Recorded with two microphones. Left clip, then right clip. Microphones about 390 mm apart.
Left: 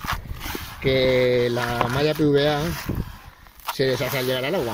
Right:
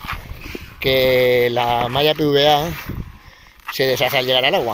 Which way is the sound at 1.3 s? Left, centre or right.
Centre.